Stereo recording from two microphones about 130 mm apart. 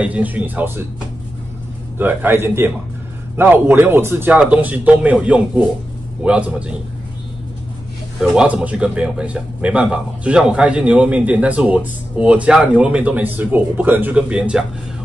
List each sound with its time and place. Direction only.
0.0 s a man's voice: 10° right (ahead or behind)
2.0 s a man's voice: 15° right (ahead or behind)
8.2 s a man's voice: 5° right (ahead or behind)